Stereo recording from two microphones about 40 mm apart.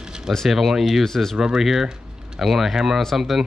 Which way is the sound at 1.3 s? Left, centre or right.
Centre.